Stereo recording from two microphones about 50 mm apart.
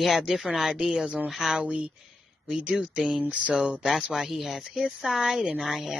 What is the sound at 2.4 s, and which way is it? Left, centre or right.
Speech, centre.